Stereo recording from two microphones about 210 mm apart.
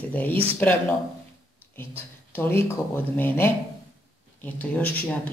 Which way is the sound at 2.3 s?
10° left (ahead or behind).